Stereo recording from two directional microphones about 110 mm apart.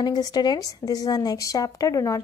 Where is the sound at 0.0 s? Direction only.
40° left (ahead or behind).